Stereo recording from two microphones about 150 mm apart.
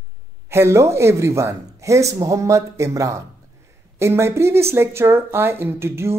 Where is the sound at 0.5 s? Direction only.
20° right (ahead or behind).